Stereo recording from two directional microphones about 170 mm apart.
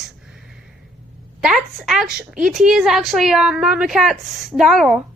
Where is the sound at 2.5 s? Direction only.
5° right (ahead or behind).